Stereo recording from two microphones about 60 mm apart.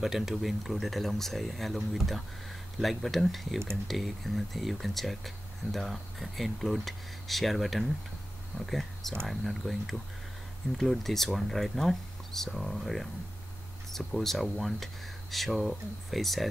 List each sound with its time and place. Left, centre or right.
0.0 s speech: centre